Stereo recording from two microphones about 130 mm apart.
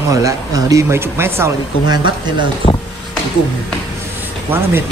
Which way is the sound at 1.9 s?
35° right (ahead or behind).